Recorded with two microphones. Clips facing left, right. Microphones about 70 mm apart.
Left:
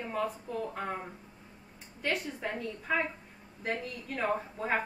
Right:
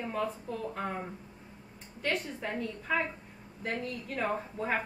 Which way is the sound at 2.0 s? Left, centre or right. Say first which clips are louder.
Even; centre.